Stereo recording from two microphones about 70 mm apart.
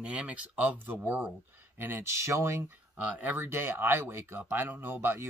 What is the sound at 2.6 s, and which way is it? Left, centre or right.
Speech, right.